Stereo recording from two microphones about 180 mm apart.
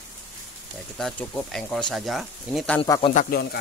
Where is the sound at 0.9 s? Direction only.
5° left (ahead or behind).